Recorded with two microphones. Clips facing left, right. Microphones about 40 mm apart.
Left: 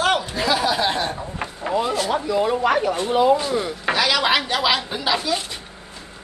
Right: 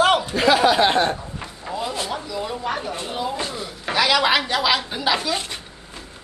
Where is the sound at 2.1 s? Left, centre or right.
Left.